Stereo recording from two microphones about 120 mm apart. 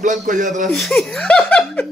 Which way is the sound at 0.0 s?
90° right.